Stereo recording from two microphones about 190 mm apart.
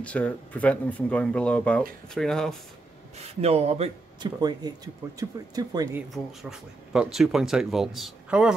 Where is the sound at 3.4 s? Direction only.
35° right (ahead or behind).